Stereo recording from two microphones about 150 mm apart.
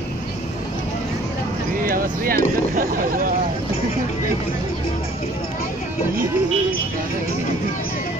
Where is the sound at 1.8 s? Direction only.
70° right (ahead or behind).